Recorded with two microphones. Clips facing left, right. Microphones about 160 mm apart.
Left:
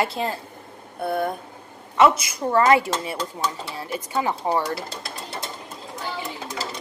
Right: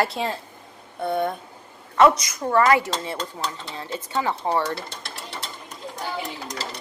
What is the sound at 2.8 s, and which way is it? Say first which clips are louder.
Speech: left 2 dB; 15° left (ahead or behind).